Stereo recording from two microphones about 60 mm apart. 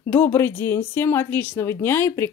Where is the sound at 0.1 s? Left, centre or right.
Left.